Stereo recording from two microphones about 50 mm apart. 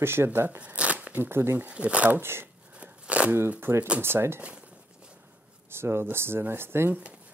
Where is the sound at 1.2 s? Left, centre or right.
Right.